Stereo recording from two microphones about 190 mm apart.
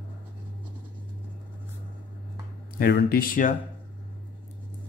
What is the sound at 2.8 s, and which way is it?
Speech, 55° left (ahead or behind).